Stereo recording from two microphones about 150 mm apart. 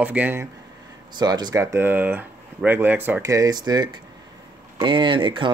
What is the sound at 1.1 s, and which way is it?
Speech, 30° right (ahead or behind).